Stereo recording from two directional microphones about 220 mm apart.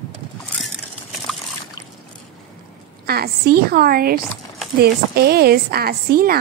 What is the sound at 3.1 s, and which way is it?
A woman's voice, 45° right (ahead or behind).